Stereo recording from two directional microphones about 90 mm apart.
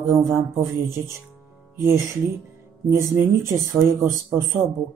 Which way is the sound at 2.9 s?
35° right (ahead or behind).